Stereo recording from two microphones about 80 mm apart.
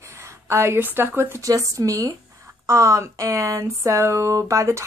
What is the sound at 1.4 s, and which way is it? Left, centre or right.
Speech, right.